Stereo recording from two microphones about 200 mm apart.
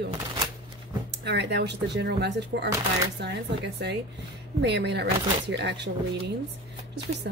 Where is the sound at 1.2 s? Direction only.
60° right (ahead or behind).